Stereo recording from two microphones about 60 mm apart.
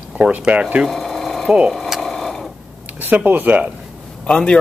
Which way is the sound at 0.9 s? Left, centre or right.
Centre.